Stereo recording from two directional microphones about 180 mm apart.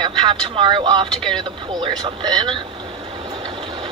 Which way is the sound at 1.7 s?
25° right (ahead or behind).